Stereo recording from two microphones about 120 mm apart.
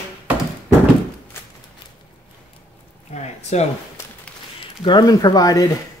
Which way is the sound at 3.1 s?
70° left (ahead or behind).